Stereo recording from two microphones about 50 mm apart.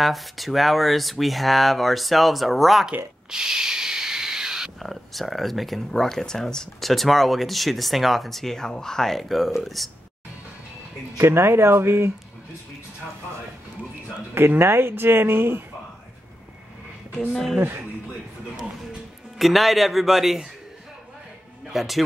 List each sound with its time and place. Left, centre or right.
0.0 s speech: centre
3.3 s a sound: centre
4.7 s speech: centre
11.1 s speech: right
14.3 s speech: right
17.3 s speech: centre
17.6 s speech: right
19.3 s speech: centre
21.6 s speech: centre